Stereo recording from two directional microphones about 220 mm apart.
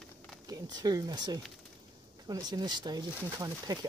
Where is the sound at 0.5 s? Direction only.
20° right (ahead or behind).